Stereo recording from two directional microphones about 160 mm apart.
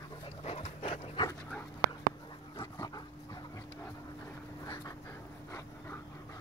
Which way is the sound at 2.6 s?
25° left (ahead or behind).